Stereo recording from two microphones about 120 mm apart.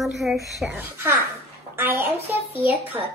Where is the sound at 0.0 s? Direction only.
Centre (ahead or behind).